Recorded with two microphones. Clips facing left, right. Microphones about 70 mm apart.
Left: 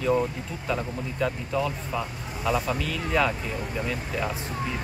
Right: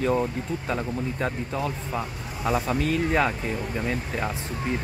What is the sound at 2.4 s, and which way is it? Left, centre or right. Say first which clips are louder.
Speech: right 2 dB; right.